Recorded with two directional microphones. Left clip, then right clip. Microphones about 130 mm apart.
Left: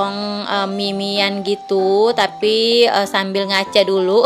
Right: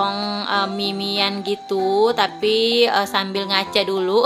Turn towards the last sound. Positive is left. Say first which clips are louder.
# left 5 dB
turn(degrees=35)  # may be behind; listen again after turning